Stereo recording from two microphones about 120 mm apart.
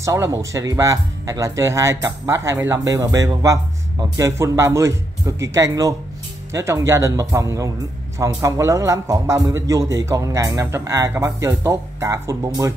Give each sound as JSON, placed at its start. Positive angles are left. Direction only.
{"t": 0.0, "sound": "a man's voice", "side_deg": -25}